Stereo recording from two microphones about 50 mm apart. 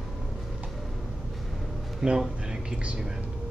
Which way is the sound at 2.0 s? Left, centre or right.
Centre.